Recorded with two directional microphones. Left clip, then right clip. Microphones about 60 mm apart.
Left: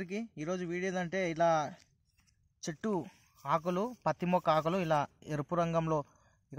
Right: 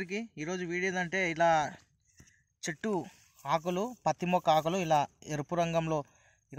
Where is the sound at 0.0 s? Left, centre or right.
Centre.